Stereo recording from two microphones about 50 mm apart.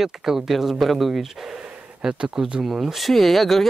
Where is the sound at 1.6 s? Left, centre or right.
Centre.